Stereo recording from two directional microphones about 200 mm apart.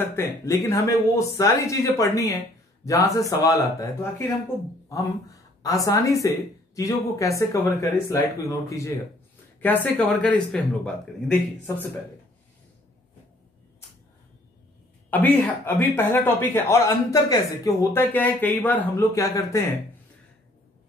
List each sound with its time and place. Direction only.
0.0 s speech: 10° left (ahead or behind)
15.0 s speech: 10° left (ahead or behind)